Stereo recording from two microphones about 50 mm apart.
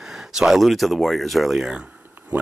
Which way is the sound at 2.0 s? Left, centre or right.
Right.